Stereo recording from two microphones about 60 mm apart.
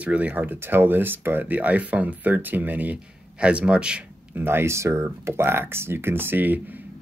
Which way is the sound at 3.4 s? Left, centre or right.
Centre.